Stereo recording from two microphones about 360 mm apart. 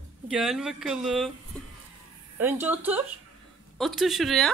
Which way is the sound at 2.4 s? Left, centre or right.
Centre.